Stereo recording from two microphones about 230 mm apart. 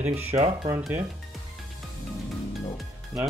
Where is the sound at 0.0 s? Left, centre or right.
Right.